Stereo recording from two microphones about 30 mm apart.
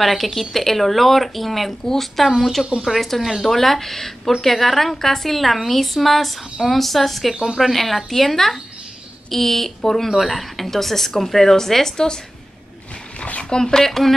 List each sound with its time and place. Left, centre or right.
0.0 s a woman's voice: centre
13.4 s speech: left
13.8 s a woman's voice: centre